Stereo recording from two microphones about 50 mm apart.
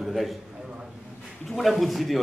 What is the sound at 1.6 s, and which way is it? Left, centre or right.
Speech, centre.